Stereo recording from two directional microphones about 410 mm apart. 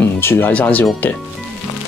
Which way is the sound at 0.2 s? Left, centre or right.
Centre.